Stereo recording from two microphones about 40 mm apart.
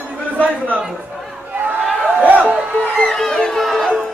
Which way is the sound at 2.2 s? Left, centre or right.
Right.